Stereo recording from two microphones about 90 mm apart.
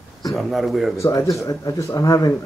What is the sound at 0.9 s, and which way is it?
A man's voice, 35° left (ahead or behind).